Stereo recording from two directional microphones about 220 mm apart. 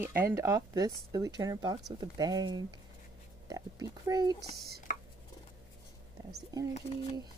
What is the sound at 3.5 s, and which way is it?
Oink, 15° right (ahead or behind).